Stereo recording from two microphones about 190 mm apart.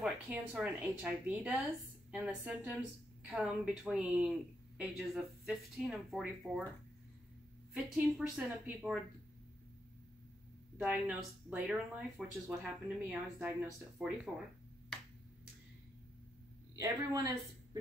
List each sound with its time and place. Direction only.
0.0 s a woman's voice: 5° right (ahead or behind)
7.7 s a woman's voice: centre (ahead or behind)
10.8 s a woman's voice: 5° right (ahead or behind)
16.7 s speech: 15° right (ahead or behind)